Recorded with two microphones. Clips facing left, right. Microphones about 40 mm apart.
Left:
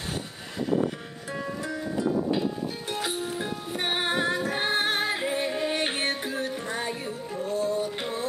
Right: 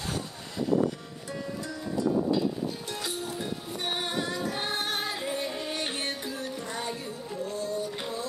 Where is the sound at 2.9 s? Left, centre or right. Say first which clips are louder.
Left 4 dB; left.